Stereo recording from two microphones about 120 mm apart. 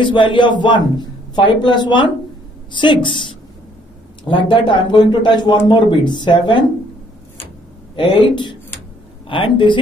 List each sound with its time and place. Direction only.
0.0 s a man's voice: 40° left (ahead or behind)
7.9 s speech: 45° left (ahead or behind)